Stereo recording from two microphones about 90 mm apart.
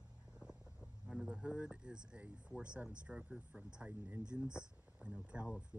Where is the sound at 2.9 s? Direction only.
10° right (ahead or behind).